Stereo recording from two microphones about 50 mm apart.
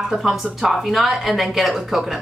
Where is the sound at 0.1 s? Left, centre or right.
Centre.